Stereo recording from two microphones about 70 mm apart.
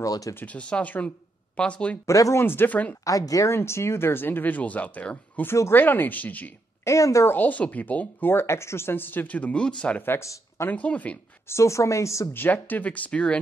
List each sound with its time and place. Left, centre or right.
0.0 s speech: left
0.5 s speech: centre
2.0 s speech: left
2.4 s speech: left
3.0 s speech: left
3.5 s speech: left
6.8 s a woman's voice: left
7.2 s speech: left
10.2 s speech: left
10.7 s speech: left
11.4 s speech: left
12.4 s speech: left